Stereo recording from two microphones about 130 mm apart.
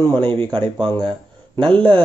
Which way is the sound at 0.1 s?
40° right (ahead or behind).